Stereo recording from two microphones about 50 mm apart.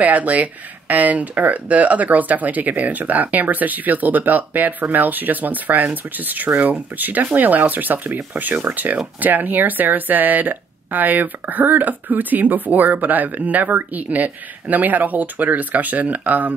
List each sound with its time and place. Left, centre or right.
0.0 s speech: right